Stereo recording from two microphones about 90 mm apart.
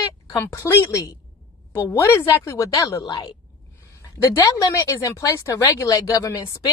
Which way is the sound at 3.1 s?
50° left (ahead or behind).